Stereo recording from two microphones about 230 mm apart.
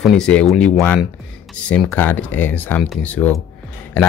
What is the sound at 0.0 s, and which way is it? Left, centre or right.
Speech, centre.